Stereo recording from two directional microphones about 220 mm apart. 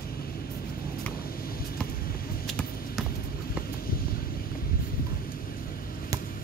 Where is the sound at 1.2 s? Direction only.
40° left (ahead or behind).